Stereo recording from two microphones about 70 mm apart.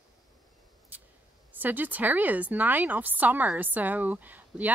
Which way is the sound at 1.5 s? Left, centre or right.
Right.